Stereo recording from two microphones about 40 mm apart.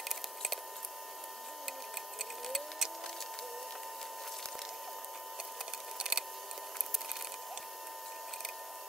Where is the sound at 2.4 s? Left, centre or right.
Centre.